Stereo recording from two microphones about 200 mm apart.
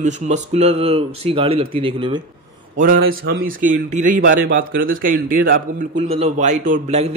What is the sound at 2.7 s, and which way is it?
A man's voice, 45° right (ahead or behind).